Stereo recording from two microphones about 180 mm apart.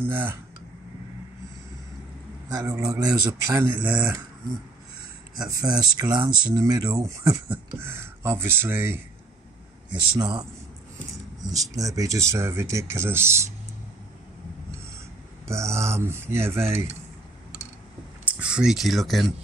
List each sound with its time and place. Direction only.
0.0 s speech: 10° right (ahead or behind)
2.5 s speech: 15° right (ahead or behind)
5.5 s speech: 20° right (ahead or behind)
10.1 s speech: 20° right (ahead or behind)
11.4 s speech: 20° right (ahead or behind)
15.4 s speech: 15° right (ahead or behind)
18.2 s speech: 5° right (ahead or behind)